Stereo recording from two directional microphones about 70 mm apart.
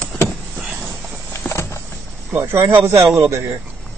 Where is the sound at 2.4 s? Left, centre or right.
Right.